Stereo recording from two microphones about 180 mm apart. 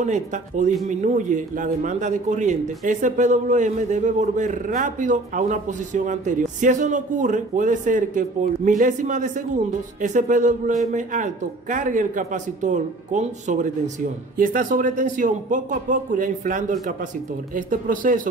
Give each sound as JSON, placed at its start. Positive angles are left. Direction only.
{"t": 0.0, "sound": "speech", "side_deg": -40}